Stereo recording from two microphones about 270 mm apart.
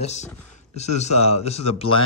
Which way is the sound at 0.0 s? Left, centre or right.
Left.